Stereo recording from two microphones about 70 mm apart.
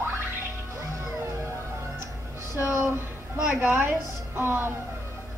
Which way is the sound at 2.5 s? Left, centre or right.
Right.